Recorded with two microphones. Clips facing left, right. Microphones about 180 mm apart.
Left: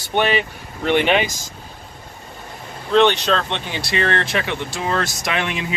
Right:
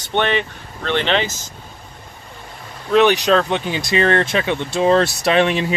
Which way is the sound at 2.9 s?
10° right (ahead or behind).